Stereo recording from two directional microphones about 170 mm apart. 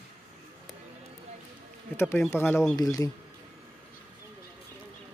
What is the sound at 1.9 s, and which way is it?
Speech, 10° left (ahead or behind).